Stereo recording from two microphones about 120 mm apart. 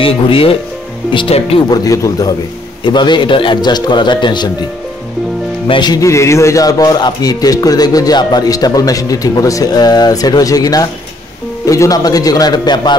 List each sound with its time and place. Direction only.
0.0 s speech: 50° left (ahead or behind)
1.7 s speech: 30° left (ahead or behind)
2.8 s speech: 40° left (ahead or behind)
5.7 s speech: 35° left (ahead or behind)
6.0 s speech: 25° left (ahead or behind)